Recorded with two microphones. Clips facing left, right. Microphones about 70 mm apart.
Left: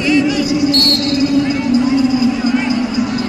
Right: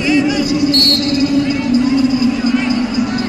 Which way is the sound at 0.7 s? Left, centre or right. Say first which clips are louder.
Even; right.